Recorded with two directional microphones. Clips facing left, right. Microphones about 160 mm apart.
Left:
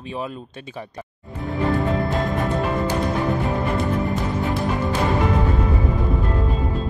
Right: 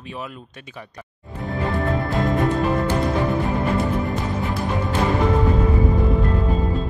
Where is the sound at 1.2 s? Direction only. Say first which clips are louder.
Left 2 dB; centre (ahead or behind).